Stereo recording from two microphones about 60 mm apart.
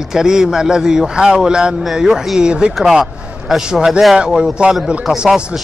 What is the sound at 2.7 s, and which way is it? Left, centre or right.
A man's voice, centre.